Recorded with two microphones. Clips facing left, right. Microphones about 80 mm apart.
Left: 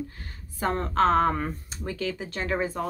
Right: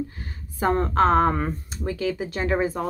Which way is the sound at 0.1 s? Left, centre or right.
Centre.